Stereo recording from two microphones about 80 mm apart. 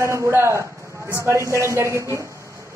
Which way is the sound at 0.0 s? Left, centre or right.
Right.